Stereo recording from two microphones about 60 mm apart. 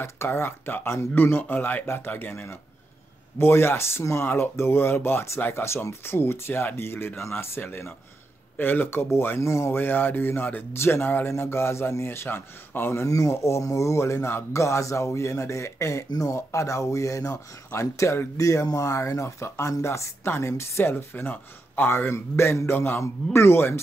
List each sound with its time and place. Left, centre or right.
0.0 s speech: left
9.4 s speech: left
9.7 s speech: left
13.0 s speech: left
17.7 s speech: left
18.4 s speech: left